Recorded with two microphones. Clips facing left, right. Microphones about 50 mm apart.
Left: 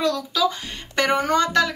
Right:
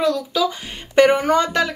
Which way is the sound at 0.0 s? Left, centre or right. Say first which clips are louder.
Right 2 dB; centre.